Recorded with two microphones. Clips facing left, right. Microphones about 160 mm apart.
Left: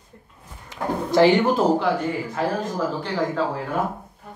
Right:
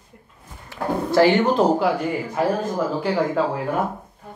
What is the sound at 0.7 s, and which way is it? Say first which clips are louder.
Speech: right 1 dB; 20° left (ahead or behind).